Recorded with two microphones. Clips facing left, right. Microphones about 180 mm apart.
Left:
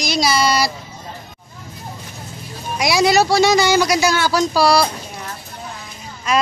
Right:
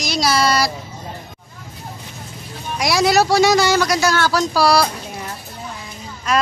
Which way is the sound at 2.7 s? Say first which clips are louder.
Left 1 dB; centre (ahead or behind).